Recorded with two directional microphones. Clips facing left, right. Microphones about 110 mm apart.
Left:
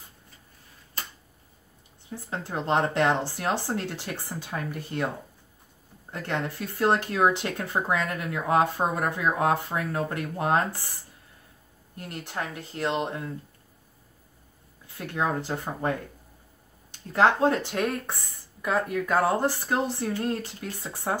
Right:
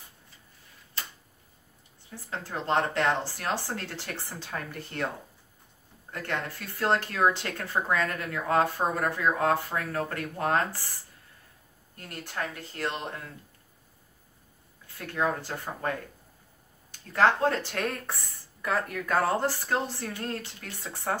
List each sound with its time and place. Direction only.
2.0 s speech: 20° left (ahead or behind)
6.2 s speech: 20° left (ahead or behind)
11.9 s speech: 20° left (ahead or behind)
15.1 s speech: 20° left (ahead or behind)
17.1 s speech: 20° left (ahead or behind)